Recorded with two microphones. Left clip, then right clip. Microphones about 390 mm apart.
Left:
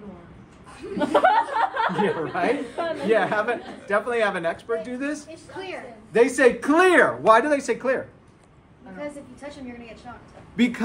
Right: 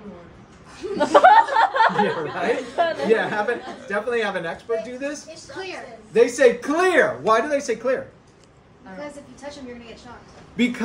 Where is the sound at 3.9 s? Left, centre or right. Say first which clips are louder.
Left 1 dB; centre.